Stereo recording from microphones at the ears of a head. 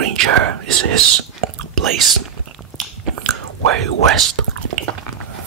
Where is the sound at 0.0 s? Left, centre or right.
Right.